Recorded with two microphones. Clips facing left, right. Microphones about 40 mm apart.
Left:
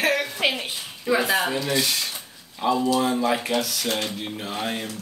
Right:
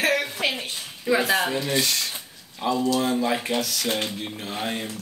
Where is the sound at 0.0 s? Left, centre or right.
Centre.